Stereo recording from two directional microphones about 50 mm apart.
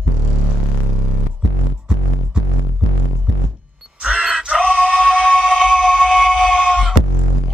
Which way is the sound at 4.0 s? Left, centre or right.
Centre.